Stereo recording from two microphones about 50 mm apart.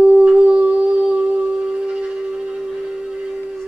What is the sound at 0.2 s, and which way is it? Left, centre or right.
Music, right.